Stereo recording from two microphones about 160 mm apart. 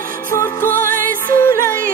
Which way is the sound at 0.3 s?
15° left (ahead or behind).